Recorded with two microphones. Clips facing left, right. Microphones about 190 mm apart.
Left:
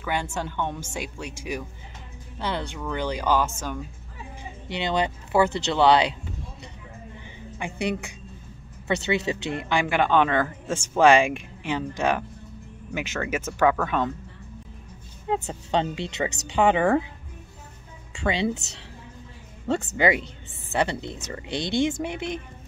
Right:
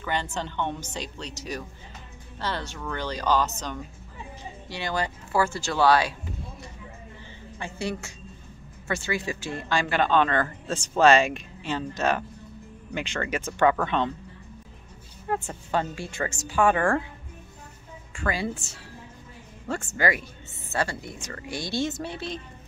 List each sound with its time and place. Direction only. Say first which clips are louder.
0.0 s speech: left 1 dB; 10° left (ahead or behind)
4.6 s speech: left 4 dB; 20° left (ahead or behind)
7.5 s speech: left 4 dB; 15° left (ahead or behind)
15.2 s speech: left 2 dB; 20° left (ahead or behind)
18.1 s speech: left 4 dB; 25° left (ahead or behind)
20.0 s speech: left 2 dB; 20° left (ahead or behind)